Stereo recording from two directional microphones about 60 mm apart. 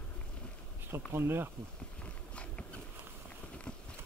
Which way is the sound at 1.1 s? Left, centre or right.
Right.